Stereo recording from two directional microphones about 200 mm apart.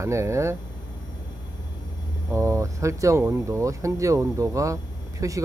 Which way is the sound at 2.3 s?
15° right (ahead or behind).